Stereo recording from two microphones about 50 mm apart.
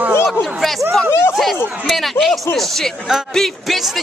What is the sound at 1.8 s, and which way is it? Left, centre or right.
Speech, centre.